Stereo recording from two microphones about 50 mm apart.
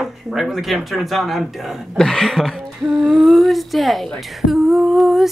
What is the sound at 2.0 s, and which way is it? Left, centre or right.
Speech, centre.